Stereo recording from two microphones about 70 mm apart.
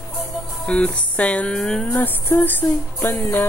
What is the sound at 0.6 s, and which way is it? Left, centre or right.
Speech, centre.